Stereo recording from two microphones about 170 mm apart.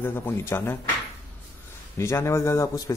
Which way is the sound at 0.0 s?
10° left (ahead or behind).